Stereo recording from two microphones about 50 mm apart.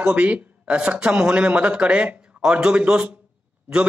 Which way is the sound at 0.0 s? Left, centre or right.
Right.